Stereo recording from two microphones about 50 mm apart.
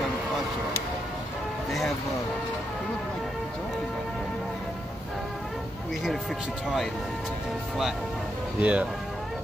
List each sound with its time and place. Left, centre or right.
8.5 s speech: right